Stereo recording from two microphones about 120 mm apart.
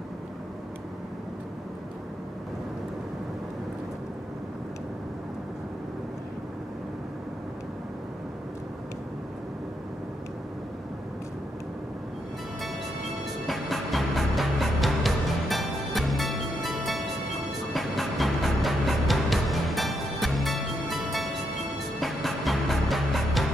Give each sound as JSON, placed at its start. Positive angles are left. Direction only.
{"t": 13.5, "sound": "music", "side_deg": 0}